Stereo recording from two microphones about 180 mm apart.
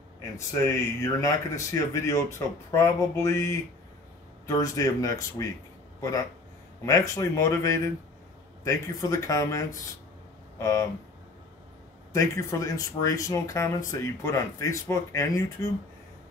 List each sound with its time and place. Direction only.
1.0 s speech: 15° left (ahead or behind)
10.6 s speech: 15° left (ahead or behind)
12.1 s speech: 15° left (ahead or behind)